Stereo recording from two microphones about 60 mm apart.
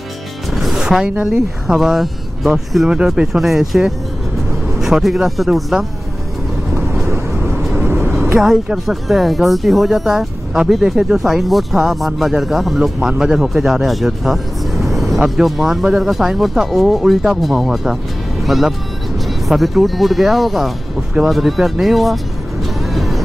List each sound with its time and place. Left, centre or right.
0.5 s music: centre
0.8 s a woman's voice: centre
1.1 s speech: right
1.7 s speech: centre
6.7 s vehicle: right
8.7 s speech: centre
22.8 s vehicle: centre